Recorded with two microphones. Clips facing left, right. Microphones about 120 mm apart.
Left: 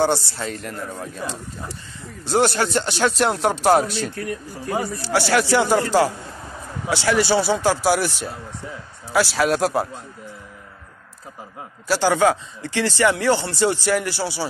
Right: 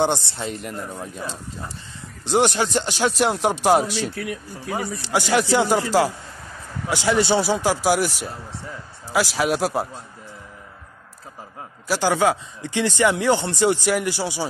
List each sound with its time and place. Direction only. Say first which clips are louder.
0.0 s speech: left 1 dB; 20° right (ahead or behind)
2.2 s speech: even; 15° right (ahead or behind)
7.4 s speech: left 1 dB; 10° right (ahead or behind)
11.9 s speech: left 2 dB; 10° right (ahead or behind)